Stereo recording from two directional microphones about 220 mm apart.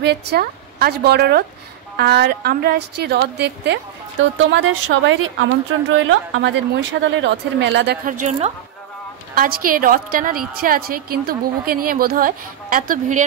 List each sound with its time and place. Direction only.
0.0 s a woman's voice: 50° right (ahead or behind)